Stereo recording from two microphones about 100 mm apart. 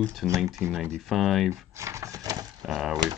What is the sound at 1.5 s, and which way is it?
Speech, 30° right (ahead or behind).